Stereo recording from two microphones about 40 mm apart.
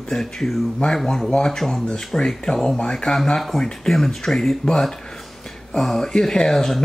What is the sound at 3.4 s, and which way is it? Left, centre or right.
Speech, centre.